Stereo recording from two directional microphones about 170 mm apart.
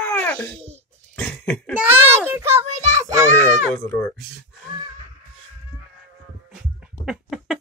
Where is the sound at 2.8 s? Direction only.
45° right (ahead or behind).